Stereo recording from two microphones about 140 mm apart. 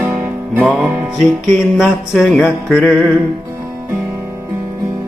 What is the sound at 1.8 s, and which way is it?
Music, 5° left (ahead or behind).